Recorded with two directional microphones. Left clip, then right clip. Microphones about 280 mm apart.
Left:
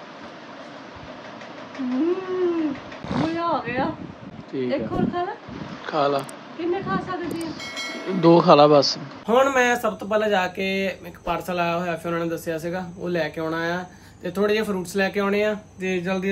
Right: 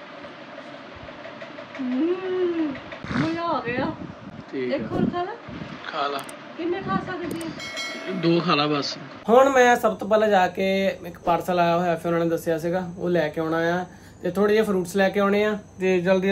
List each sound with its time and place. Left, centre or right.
3.1 s a sound: centre
4.5 s speech: centre
5.9 s speech: centre
6.7 s speech: centre
7.6 s train: centre
8.2 s a man's voice: centre
9.2 s speech: centre